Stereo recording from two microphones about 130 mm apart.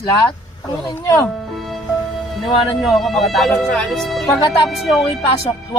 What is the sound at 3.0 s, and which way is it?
Speech, centre (ahead or behind).